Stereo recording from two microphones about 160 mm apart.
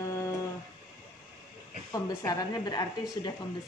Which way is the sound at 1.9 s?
20° left (ahead or behind).